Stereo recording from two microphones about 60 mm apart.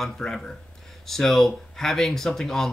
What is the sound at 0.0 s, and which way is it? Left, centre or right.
Speech, centre.